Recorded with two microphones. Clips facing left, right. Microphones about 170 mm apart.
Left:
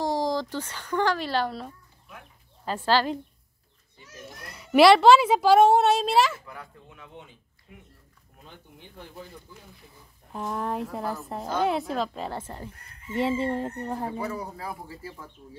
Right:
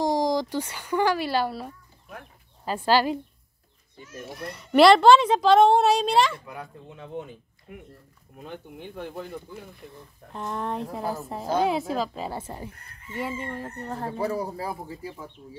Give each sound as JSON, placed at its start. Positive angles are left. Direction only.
{"t": 0.0, "sound": "speech", "side_deg": -15}
{"t": 4.5, "sound": "a child's voice", "side_deg": 5}
{"t": 6.4, "sound": "a child's voice", "side_deg": -20}
{"t": 7.2, "sound": "speech", "side_deg": -50}
{"t": 8.4, "sound": "speech", "side_deg": -65}
{"t": 10.3, "sound": "a child's voice", "side_deg": 5}
{"t": 13.1, "sound": "speech", "side_deg": 25}
{"t": 14.1, "sound": "speech", "side_deg": -35}
{"t": 14.9, "sound": "speech", "side_deg": -15}